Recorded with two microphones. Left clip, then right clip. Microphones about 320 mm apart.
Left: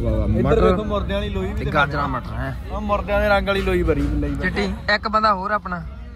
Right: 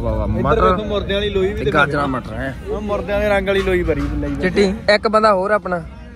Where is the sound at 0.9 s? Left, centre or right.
Centre.